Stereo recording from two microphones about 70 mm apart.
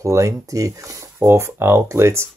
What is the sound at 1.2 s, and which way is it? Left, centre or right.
Speech, right.